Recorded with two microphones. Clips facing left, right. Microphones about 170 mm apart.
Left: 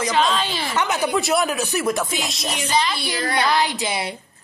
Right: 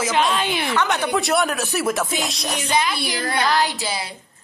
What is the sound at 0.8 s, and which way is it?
Speech, 5° left (ahead or behind).